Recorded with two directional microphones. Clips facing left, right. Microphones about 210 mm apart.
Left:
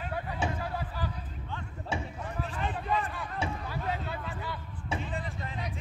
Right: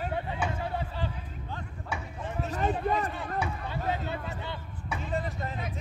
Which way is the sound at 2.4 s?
40° right (ahead or behind).